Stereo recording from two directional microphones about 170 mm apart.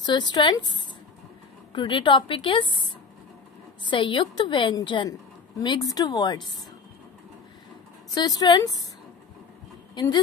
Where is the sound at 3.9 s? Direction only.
30° left (ahead or behind).